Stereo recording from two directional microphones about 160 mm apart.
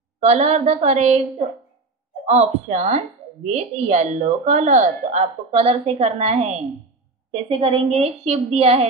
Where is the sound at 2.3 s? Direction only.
45° right (ahead or behind).